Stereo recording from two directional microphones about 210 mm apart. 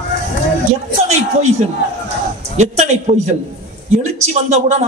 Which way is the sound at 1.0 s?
30° right (ahead or behind).